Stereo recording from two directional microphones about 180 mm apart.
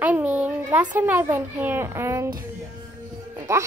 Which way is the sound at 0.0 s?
10° right (ahead or behind).